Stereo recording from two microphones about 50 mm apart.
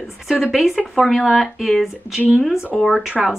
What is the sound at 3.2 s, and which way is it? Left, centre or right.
Speech, centre.